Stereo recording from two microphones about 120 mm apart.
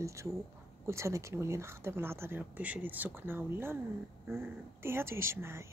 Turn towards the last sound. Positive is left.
turn(degrees=-20)  # may be behind; listen again after turning